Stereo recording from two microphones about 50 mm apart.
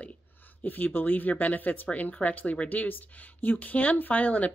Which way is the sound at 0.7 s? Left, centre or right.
Left.